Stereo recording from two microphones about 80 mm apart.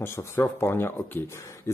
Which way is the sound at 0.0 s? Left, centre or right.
Left.